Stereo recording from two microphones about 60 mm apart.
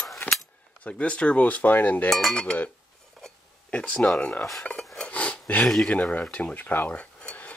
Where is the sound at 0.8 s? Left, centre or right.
Left.